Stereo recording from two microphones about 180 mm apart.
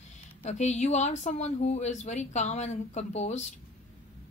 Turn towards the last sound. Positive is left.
turn(degrees=40)  # may be behind; listen again after turning